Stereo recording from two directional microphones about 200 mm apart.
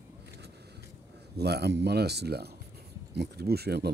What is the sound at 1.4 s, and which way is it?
Speech, 55° right (ahead or behind).